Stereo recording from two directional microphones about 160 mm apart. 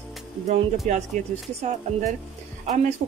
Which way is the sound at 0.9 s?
50° right (ahead or behind).